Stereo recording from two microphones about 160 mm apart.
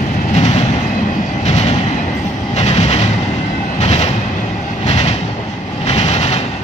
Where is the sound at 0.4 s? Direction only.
45° left (ahead or behind).